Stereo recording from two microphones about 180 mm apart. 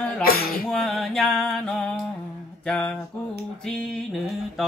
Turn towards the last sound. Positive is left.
turn(degrees=0)  # may be behind; listen again after turning